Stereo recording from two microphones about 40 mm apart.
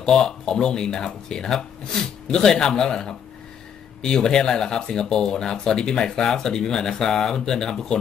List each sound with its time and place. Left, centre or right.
0.0 s speech: centre